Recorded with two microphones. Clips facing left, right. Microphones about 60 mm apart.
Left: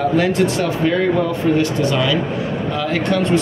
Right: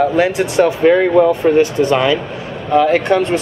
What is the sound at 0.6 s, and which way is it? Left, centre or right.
Speech, right.